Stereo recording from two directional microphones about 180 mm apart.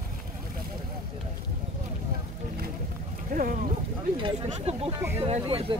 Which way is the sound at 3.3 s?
50° right (ahead or behind).